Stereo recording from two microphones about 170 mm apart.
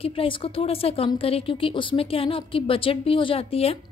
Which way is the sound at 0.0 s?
35° left (ahead or behind).